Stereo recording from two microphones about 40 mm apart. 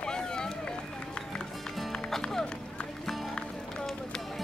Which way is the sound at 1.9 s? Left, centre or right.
Centre.